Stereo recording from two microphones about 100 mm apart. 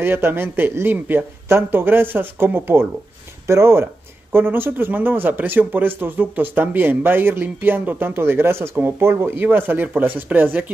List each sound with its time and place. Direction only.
0.0 s speech: 25° right (ahead or behind)